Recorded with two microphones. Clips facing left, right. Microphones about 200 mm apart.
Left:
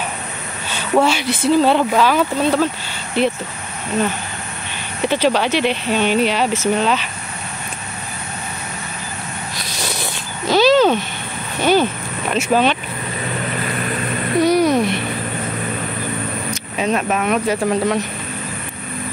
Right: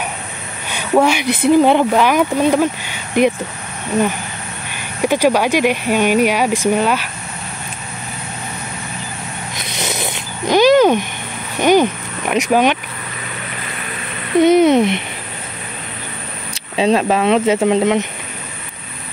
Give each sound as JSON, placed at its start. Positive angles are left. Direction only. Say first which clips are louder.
{"t": 0.7, "sound": "a sound", "louder": "right 2 dB", "side_deg": -15}
{"t": 1.5, "sound": "speech", "louder": "right 3 dB", "side_deg": -15}
{"t": 5.0, "sound": "speech", "louder": "right 3 dB", "side_deg": -10}
{"t": 9.7, "sound": "a sound", "louder": "right 4 dB", "side_deg": -20}
{"t": 11.6, "sound": "speech", "louder": "right 3 dB", "side_deg": -15}
{"t": 14.4, "sound": "speech", "louder": "right 5 dB", "side_deg": -20}
{"t": 16.4, "sound": "speech", "louder": "right 7 dB", "side_deg": -30}